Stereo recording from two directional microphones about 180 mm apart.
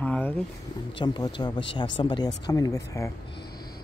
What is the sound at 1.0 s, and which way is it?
Speech, 25° left (ahead or behind).